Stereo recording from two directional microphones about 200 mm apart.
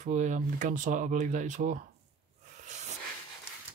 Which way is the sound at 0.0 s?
35° right (ahead or behind).